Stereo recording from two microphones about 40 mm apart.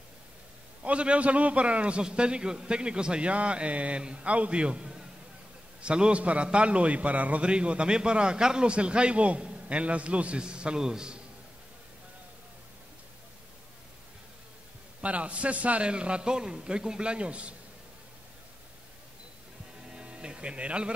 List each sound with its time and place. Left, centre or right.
0.8 s a man's voice: right
7.4 s a man's voice: right
15.0 s a man's voice: right
15.9 s a man's voice: right
19.9 s speech: right